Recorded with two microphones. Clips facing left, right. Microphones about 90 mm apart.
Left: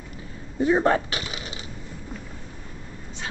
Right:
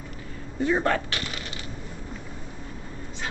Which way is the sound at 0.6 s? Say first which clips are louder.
Left 4 dB; 20° left (ahead or behind).